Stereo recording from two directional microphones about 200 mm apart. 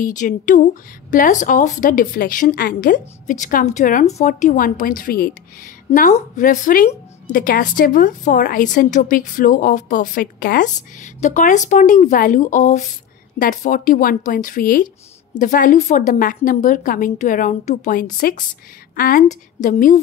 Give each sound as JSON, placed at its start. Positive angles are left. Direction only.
{"t": 0.0, "sound": "a woman's voice", "side_deg": 40}